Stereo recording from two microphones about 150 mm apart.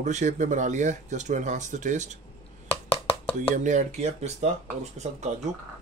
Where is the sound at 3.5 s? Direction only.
55° right (ahead or behind).